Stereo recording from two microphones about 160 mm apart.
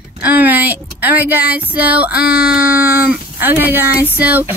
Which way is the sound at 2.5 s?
10° right (ahead or behind).